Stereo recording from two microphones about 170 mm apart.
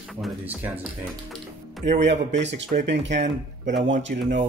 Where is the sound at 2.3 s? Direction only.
90° right.